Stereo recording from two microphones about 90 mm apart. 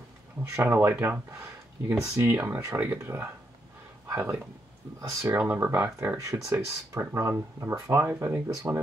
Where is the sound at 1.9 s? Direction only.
30° right (ahead or behind).